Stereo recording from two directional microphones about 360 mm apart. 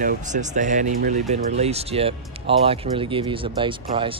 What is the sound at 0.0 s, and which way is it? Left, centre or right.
Speech, right.